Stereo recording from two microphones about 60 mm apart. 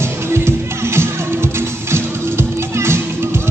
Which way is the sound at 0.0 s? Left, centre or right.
Right.